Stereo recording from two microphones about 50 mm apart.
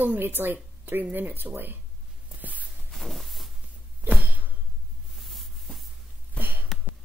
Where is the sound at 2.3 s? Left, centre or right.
Right.